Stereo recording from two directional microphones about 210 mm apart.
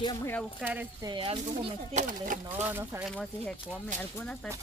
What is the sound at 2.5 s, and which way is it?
Speech, 10° right (ahead or behind).